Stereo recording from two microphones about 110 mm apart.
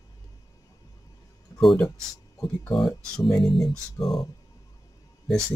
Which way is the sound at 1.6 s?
5° left (ahead or behind).